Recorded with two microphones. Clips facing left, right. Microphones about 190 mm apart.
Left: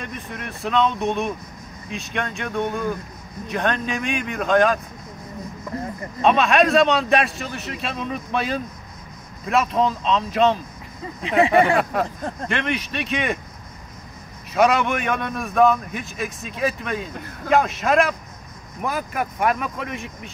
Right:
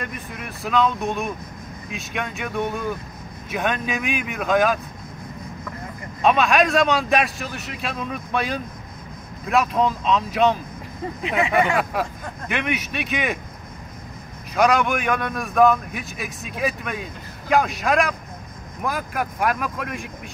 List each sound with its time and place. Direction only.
0.0 s a man's voice: 5° right (ahead or behind)
6.2 s a man's voice: centre (ahead or behind)
11.3 s speech: 30° left (ahead or behind)
11.9 s a man's voice: 5° right (ahead or behind)
14.5 s a man's voice: centre (ahead or behind)